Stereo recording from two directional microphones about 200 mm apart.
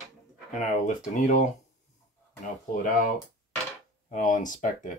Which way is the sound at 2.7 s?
40° left (ahead or behind).